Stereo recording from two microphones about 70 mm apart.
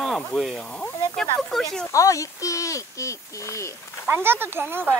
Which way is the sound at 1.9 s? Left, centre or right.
Left.